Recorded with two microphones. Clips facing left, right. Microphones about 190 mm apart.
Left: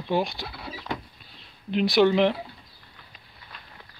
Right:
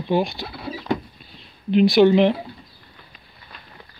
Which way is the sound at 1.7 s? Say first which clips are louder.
Right 6 dB; 10° right (ahead or behind).